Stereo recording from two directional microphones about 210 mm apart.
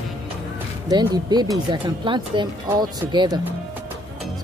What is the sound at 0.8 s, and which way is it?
Speech, 20° right (ahead or behind).